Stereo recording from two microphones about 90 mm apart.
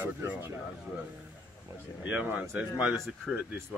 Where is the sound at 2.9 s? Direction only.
Centre (ahead or behind).